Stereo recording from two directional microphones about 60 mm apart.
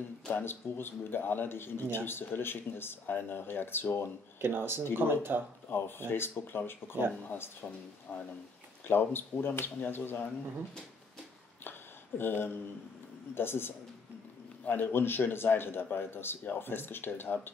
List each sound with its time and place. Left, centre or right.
0.3 s speech: left
4.4 s speech: right
5.7 s speech: left
12.2 s speech: left